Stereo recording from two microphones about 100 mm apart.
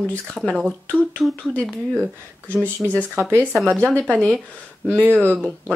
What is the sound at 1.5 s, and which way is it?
Speech, 5° left (ahead or behind).